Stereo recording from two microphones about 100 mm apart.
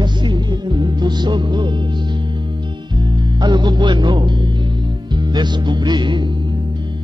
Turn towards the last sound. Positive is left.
turn(degrees=-50)  # may be behind; listen again after turning